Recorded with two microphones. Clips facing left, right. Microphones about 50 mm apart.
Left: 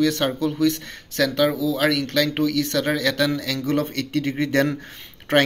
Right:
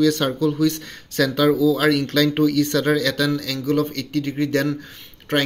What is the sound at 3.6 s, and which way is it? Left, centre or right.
Speech, left.